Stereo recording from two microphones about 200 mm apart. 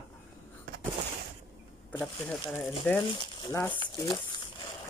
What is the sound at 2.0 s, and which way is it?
Speech, centre (ahead or behind).